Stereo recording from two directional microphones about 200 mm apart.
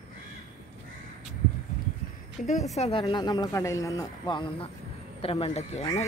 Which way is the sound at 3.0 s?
20° left (ahead or behind).